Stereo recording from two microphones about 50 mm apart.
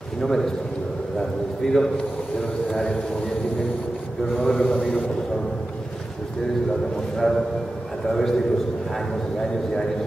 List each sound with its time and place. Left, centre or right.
0.2 s a man's voice: centre
1.6 s a man's voice: centre
4.5 s a man's voice: centre
7.2 s a man's voice: centre